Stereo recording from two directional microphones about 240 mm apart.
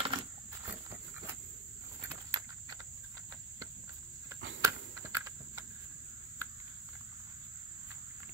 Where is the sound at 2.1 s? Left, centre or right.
Centre.